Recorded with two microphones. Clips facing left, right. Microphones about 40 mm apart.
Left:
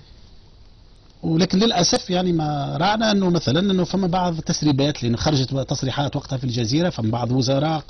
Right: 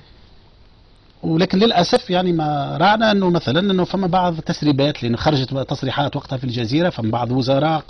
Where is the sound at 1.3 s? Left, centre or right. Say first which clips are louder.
Right 3 dB; right.